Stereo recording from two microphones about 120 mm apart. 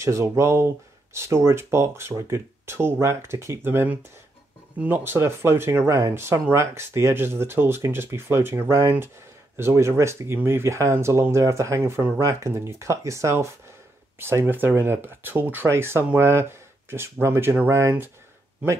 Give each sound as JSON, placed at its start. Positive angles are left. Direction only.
{"t": 0.0, "sound": "speech", "side_deg": -25}